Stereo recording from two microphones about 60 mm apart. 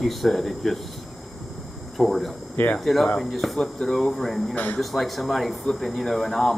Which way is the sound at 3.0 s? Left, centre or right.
Centre.